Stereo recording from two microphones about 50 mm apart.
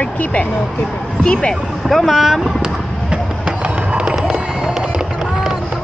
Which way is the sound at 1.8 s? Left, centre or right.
Centre.